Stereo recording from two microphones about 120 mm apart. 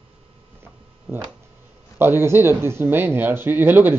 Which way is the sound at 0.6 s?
20° right (ahead or behind).